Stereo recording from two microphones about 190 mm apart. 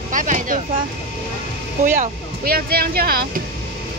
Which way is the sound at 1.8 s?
45° right (ahead or behind).